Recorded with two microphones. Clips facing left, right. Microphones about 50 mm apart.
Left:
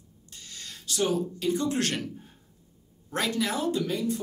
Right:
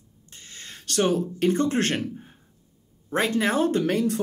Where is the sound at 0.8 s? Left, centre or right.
Right.